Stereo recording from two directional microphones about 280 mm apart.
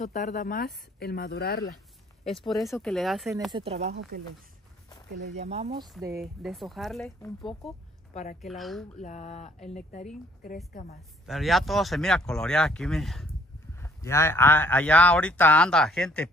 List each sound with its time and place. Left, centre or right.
0.0 s speech: left
2.2 s speech: centre
3.5 s speech: right
5.3 s speech: right
6.2 s speech: centre
8.1 s a woman's voice: left
8.4 s speech: centre
9.0 s speech: left
11.2 s speech: centre